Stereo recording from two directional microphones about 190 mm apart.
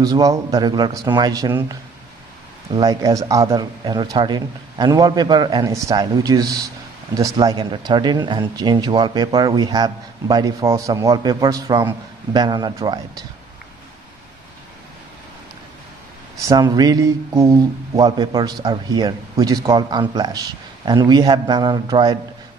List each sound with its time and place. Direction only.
0.0 s speech: 20° right (ahead or behind)
16.4 s speech: 20° right (ahead or behind)